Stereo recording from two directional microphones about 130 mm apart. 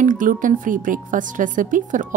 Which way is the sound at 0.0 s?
90° right.